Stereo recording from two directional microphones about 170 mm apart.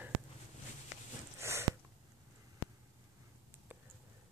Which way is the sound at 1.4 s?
15° right (ahead or behind).